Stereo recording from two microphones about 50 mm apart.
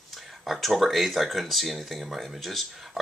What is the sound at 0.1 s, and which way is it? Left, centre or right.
Speech, centre.